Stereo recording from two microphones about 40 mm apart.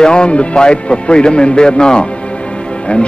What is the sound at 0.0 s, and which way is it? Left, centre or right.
Speech, left.